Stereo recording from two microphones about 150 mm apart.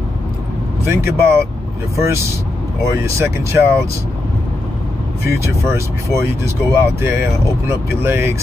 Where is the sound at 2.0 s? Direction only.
20° right (ahead or behind).